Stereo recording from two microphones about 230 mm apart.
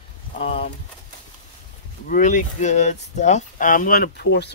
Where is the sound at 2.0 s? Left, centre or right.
Left.